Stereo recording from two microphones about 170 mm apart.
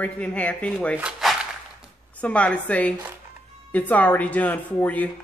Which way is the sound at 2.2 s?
10° left (ahead or behind).